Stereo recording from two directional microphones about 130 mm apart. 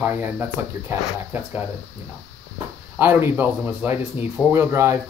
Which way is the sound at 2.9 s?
15° right (ahead or behind).